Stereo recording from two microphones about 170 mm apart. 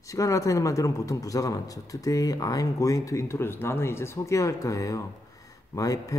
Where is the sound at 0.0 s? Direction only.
20° left (ahead or behind).